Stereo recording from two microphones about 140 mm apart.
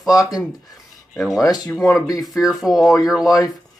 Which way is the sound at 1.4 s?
30° left (ahead or behind).